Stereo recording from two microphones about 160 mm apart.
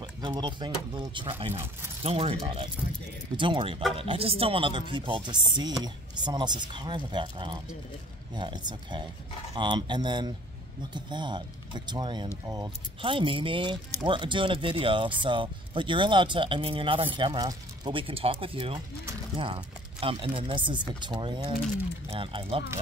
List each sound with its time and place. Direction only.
0.4 s speech: 30° right (ahead or behind)